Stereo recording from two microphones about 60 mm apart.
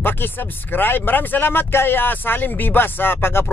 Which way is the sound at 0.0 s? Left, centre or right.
Left.